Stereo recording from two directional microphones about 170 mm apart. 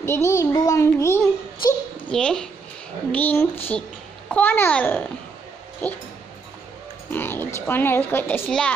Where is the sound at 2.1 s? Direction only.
5° left (ahead or behind).